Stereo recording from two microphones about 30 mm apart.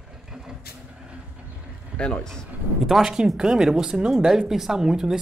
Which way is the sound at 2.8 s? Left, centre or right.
Centre.